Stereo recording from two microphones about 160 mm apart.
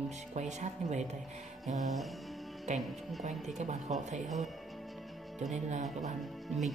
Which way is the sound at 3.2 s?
45° right (ahead or behind).